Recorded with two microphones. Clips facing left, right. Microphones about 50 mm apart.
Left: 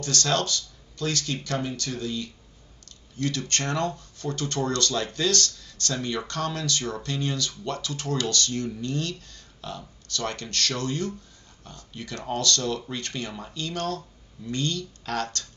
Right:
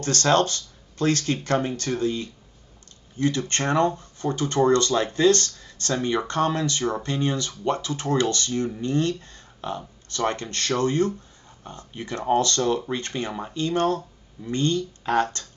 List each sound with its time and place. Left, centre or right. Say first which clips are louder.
0.0 s speech: right 6 dB; right